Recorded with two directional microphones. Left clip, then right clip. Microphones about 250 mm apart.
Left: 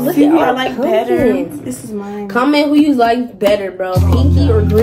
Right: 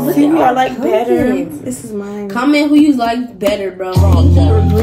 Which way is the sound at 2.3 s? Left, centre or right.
Centre.